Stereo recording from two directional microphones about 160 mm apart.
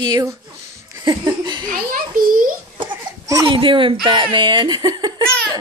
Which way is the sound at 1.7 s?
60° right (ahead or behind).